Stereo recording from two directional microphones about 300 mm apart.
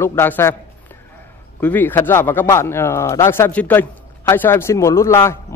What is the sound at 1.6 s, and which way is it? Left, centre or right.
Speech, centre.